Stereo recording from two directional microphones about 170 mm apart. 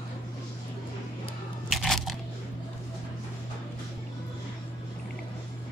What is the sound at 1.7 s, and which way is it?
Crunch, centre (ahead or behind).